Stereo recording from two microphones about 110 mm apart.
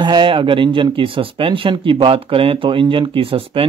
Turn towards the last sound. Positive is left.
turn(degrees=-55)  # may be behind; listen again after turning